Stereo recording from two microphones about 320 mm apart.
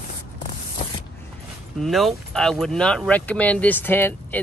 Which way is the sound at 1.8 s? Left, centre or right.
Centre.